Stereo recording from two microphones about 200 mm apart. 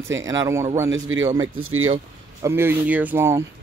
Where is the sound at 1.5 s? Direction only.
90° right.